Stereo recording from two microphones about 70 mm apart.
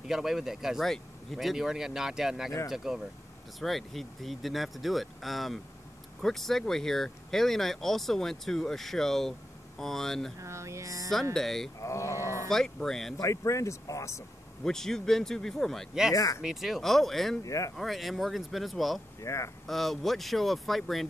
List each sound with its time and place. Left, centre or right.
0.0 s speech: centre
10.4 s a sound: right
11.3 s speech: centre
11.8 s a sound: left
12.4 s speech: centre
13.2 s speech: left
14.6 s speech: centre
15.9 s speech: centre
17.4 s speech: left
17.7 s speech: centre
19.2 s speech: left
19.6 s speech: centre